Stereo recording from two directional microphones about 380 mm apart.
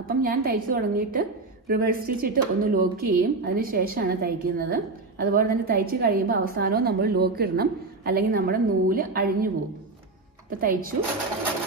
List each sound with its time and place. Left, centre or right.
0.0 s a woman's voice: right
10.6 s a woman's voice: right